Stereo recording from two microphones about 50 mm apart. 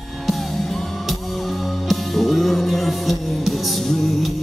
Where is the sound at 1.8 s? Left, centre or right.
Centre.